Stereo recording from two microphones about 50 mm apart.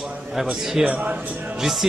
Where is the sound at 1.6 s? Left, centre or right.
Centre.